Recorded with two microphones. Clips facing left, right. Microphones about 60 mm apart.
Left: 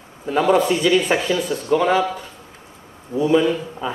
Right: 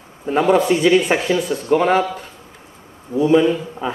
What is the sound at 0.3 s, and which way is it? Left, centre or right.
Speech, right.